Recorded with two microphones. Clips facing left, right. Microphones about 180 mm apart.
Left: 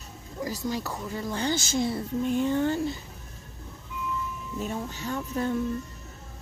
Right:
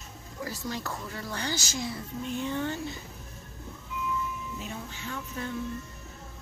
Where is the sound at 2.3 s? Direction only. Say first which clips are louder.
Left 6 dB; 35° left (ahead or behind).